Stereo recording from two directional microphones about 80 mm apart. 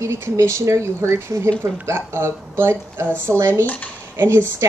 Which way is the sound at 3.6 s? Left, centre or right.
Centre.